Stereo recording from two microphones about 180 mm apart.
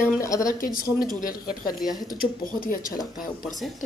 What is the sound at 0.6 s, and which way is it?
Speech, 50° left (ahead or behind).